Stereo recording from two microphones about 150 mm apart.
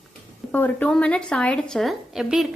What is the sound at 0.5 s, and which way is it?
Speech, 10° left (ahead or behind).